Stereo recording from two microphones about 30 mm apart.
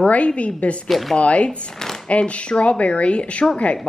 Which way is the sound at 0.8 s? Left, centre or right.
Centre.